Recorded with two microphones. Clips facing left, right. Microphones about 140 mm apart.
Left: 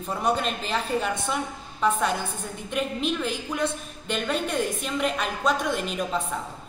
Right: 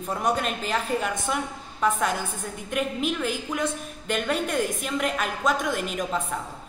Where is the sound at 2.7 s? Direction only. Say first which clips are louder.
Even; 10° right (ahead or behind).